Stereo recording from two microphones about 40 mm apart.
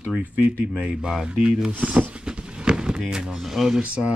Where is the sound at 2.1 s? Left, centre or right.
Right.